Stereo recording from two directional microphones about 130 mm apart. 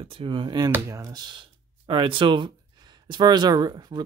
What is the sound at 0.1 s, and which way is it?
Speech, 40° right (ahead or behind).